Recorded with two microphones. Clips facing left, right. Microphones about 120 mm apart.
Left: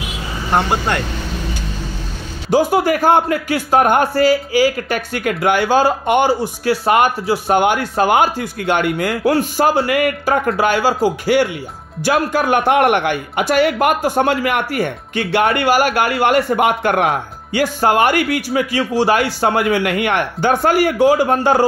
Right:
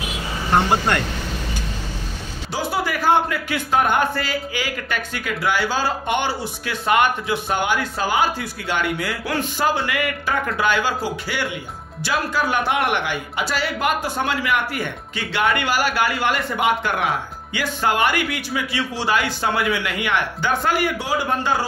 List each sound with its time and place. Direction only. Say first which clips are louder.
2.5 s a man's voice: left 10 dB; 45° left (ahead or behind)